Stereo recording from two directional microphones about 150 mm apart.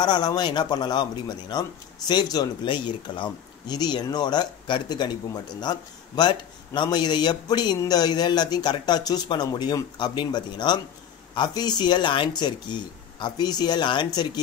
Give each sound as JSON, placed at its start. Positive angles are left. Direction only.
{"t": 0.0, "sound": "a man's voice", "side_deg": 30}